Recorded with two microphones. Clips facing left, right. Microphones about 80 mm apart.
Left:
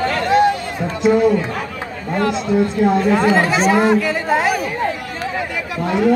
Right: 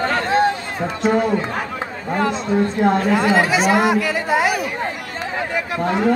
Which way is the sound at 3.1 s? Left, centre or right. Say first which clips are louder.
Left 1 dB; centre.